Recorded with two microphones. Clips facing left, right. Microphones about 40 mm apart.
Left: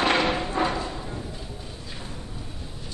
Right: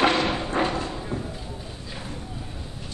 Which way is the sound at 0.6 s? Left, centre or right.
Right.